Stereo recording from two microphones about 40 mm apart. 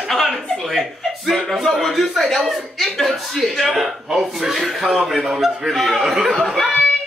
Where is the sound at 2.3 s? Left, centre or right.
Centre.